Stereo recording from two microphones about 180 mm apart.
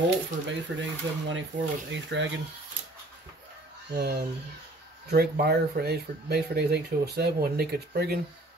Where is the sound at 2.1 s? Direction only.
80° right.